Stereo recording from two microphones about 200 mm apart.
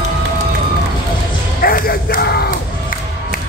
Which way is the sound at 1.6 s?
45° left (ahead or behind).